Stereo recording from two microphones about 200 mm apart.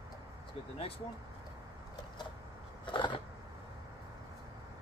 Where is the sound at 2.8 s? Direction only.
25° left (ahead or behind).